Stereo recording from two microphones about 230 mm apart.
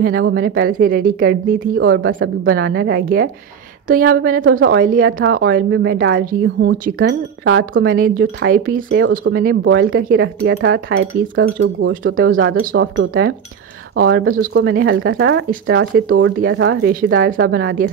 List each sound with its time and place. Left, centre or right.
0.2 s a woman's voice: right
1.8 s a woman's voice: right
6.8 s a woman's voice: right
7.4 s speech: right
7.8 s a woman's voice: right
12.4 s speech: right
13.9 s a woman's voice: right
16.9 s a woman's voice: right